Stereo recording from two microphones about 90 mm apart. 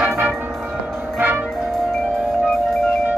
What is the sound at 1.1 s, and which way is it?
Music, 25° right (ahead or behind).